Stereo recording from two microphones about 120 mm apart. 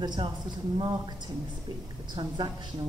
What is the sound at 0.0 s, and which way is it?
Speech, 35° right (ahead or behind).